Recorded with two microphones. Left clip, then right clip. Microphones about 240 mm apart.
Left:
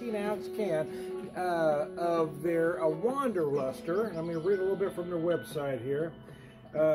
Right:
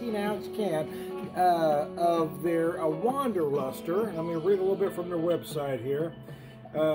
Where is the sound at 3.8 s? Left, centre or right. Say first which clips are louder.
Right 2 dB; centre.